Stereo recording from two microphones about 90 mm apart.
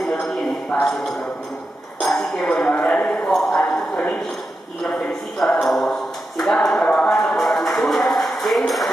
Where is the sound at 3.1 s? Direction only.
5° left (ahead or behind).